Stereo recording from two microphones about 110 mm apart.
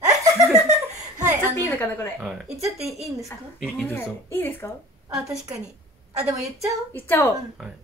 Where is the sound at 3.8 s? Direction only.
20° left (ahead or behind).